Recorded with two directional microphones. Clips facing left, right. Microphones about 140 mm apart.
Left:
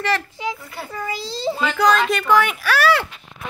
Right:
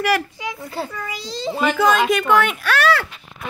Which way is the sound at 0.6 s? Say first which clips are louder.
Right 7 dB; 30° right (ahead or behind).